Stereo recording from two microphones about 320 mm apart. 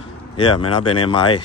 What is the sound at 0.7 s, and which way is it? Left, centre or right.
Speech, centre.